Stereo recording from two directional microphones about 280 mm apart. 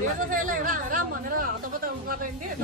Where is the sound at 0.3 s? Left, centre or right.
Right.